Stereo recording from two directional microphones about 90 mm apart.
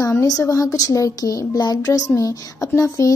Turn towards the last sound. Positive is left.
turn(degrees=40)  # may be behind; listen again after turning